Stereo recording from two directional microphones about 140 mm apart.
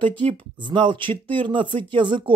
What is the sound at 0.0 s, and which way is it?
Speech, 35° right (ahead or behind).